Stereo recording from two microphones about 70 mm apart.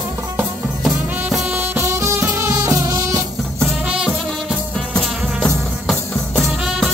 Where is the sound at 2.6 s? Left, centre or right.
Right.